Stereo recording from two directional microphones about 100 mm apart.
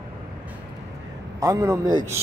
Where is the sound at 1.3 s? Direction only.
35° right (ahead or behind).